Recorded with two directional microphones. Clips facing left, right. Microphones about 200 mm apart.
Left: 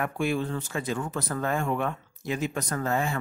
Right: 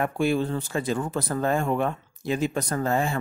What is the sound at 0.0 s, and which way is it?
Speech, 35° right (ahead or behind).